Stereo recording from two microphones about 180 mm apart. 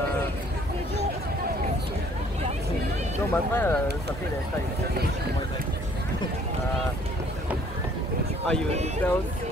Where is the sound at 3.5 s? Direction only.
10° left (ahead or behind).